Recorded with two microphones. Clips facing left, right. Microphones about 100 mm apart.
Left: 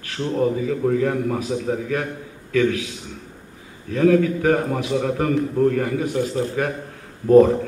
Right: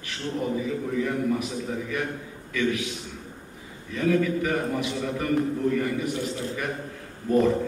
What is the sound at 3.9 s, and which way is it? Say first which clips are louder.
A man's voice: left 7 dB; 45° left (ahead or behind).